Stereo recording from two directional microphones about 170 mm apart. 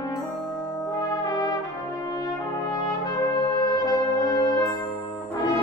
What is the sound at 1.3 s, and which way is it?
Brass instrument, 25° left (ahead or behind).